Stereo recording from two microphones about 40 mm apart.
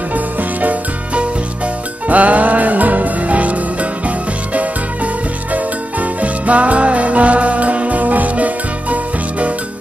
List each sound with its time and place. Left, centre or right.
0.1 s music: right